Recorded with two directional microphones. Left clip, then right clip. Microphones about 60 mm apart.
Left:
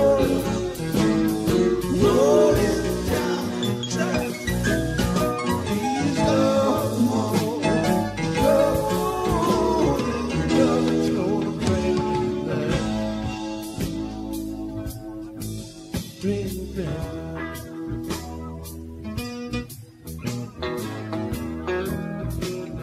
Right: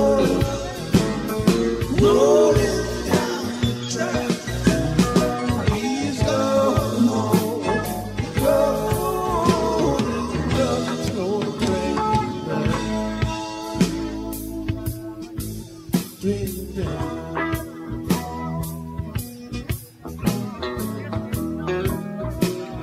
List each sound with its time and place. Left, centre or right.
0.0 s music: left
2.3 s music: centre
3.9 s music: left
6.2 s music: centre
10.3 s music: centre
16.3 s music: centre
20.6 s music: left